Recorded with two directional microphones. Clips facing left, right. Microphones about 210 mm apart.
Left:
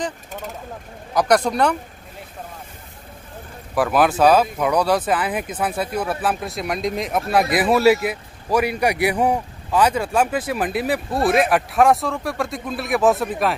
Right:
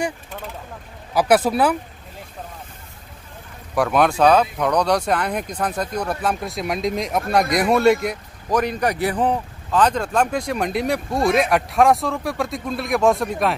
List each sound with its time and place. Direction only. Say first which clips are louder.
1.1 s a man's voice: right 1 dB; 5° right (ahead or behind)
3.7 s a man's voice: even; centre (ahead or behind)